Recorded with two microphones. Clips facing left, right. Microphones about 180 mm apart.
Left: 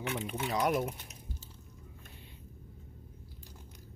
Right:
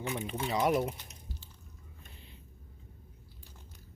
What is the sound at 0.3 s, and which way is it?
Speech, centre (ahead or behind).